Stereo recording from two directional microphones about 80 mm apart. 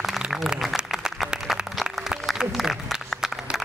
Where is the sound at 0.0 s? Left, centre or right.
Centre.